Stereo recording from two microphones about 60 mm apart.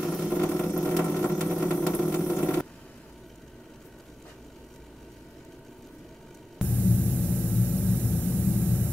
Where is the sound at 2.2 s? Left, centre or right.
Centre.